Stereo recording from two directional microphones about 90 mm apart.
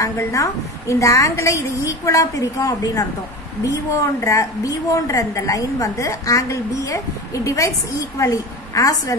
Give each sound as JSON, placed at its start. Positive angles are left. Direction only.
{"t": 0.0, "sound": "a woman's voice", "side_deg": 35}